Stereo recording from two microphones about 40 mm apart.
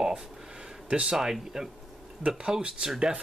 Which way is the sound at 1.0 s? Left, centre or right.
Centre.